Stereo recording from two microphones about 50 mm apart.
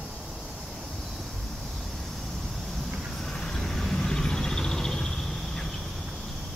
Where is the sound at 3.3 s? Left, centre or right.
Centre.